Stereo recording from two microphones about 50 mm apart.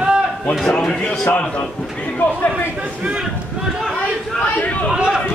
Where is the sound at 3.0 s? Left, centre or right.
Right.